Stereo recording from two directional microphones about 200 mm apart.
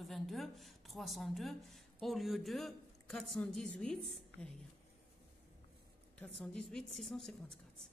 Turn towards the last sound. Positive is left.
turn(degrees=0)  # may be behind; listen again after turning